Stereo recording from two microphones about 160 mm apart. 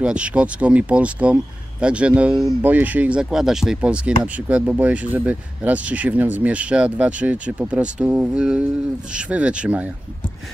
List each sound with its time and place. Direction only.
0.0 s speech: 5° right (ahead or behind)